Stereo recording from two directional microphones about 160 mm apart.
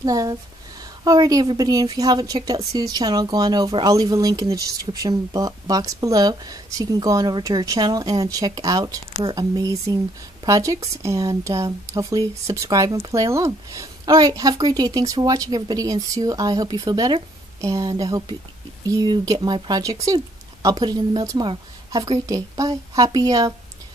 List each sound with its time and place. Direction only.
0.0 s a woman's voice: 20° right (ahead or behind)